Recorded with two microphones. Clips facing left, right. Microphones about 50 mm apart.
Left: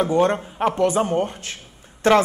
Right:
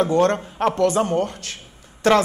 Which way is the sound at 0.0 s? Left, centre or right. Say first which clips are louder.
Right 1 dB; centre.